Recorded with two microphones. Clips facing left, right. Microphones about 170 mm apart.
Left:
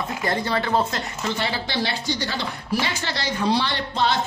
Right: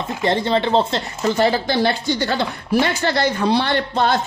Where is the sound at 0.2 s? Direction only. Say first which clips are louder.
Right 7 dB; 25° right (ahead or behind).